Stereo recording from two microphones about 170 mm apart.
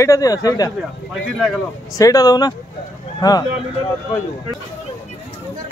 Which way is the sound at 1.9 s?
20° left (ahead or behind).